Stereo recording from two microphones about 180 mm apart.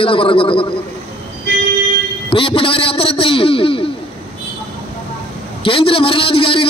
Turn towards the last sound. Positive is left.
turn(degrees=30)  # may be behind; listen again after turning